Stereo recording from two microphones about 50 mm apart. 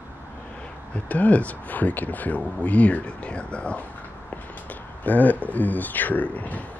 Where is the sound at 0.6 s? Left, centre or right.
Left.